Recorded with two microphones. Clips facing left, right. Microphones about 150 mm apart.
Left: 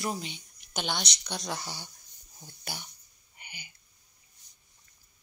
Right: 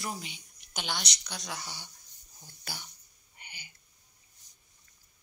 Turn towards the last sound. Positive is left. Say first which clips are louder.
# left 2 dB
turn(degrees=15)  # may be behind; listen again after turning